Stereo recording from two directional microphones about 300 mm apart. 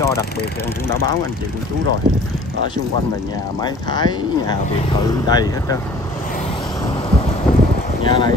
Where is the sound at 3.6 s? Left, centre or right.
Centre.